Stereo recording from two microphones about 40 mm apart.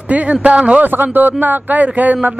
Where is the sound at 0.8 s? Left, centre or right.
Right.